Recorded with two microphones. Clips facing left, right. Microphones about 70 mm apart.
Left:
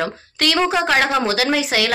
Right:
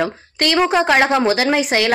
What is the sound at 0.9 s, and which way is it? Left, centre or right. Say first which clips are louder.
Speech: right 3 dB; right.